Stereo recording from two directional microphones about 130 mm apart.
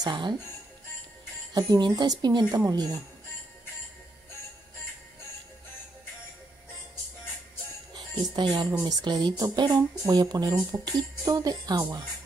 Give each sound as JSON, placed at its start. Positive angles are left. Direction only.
{"t": 0.0, "sound": "speech", "side_deg": -35}
{"t": 1.5, "sound": "speech", "side_deg": -30}
{"t": 7.9, "sound": "speech", "side_deg": -35}